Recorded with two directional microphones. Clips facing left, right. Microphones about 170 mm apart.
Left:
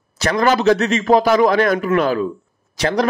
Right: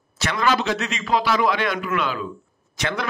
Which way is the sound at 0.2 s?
40° left (ahead or behind).